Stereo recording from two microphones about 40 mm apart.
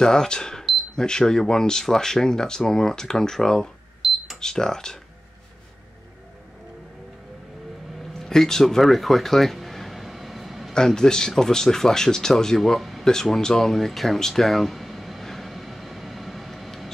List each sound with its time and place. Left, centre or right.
0.0 s speech: centre
4.0 s cash register: centre
4.4 s speech: centre
8.0 s a sound: centre
10.9 s speech: centre
13.0 s a sound: centre